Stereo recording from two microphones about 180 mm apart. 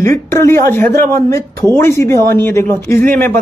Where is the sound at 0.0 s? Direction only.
15° left (ahead or behind).